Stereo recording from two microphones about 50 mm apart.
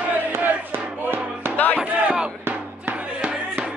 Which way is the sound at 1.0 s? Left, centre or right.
Right.